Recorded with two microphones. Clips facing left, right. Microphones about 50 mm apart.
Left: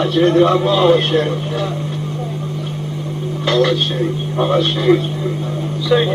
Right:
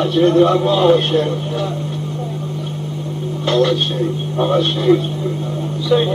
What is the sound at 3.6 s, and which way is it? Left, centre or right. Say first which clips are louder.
A man's voice: even; centre.